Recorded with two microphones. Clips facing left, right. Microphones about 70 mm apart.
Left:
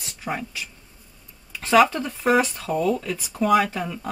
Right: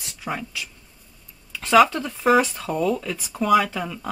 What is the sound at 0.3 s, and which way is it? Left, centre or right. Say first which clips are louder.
Speech: even; centre.